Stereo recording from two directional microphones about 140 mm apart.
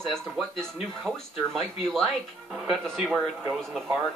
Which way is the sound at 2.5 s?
Centre (ahead or behind).